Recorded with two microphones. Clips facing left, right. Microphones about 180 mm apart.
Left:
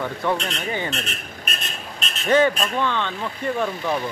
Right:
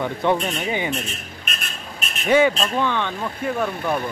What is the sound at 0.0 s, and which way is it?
A man's voice, 20° right (ahead or behind).